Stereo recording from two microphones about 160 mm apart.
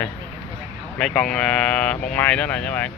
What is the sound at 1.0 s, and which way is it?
Speech, 5° left (ahead or behind).